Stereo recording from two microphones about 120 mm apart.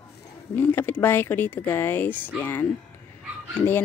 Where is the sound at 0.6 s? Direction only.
15° left (ahead or behind).